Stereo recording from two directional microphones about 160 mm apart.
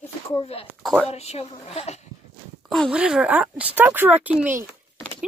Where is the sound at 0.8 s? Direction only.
5° left (ahead or behind).